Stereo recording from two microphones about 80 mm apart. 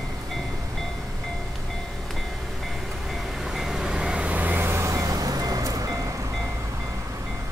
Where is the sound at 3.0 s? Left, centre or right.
Centre; by 6.2 s right.